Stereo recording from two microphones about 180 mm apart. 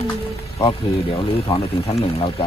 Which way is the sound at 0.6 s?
25° left (ahead or behind).